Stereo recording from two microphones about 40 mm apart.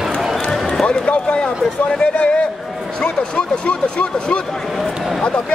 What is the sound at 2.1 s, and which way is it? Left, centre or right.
A man's voice, left.